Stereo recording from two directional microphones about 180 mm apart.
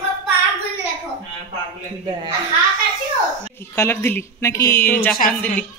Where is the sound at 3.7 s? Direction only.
15° left (ahead or behind).